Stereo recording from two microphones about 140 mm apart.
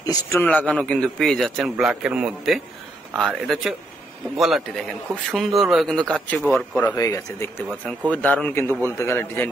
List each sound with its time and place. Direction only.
0.0 s speech: 25° left (ahead or behind)
0.4 s a man's voice: 10° left (ahead or behind)
7.0 s speech: 25° left (ahead or behind)
8.1 s a man's voice: 10° left (ahead or behind)